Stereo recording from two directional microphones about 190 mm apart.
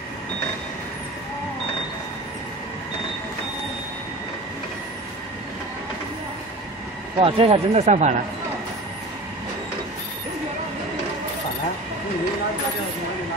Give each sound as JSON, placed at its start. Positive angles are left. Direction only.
{"t": 7.2, "sound": "speech", "side_deg": -30}